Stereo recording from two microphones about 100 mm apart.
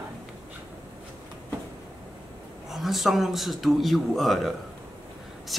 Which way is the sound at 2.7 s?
Centre (ahead or behind).